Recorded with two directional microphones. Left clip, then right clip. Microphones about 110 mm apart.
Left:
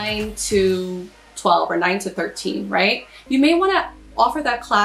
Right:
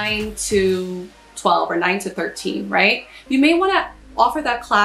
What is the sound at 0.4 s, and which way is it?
Speech, 10° left (ahead or behind).